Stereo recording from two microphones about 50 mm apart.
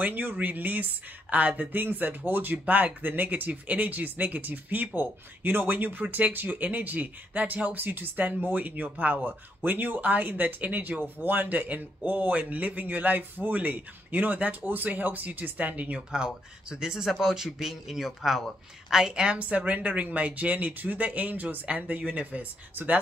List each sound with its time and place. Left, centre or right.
0.0 s speech: right
16.1 s speech: centre
19.3 s speech: right
22.8 s speech: right